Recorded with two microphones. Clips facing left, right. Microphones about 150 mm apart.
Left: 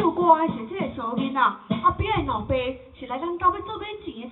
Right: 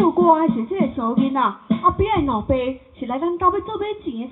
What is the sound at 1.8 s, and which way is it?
A woman's voice, 45° right (ahead or behind).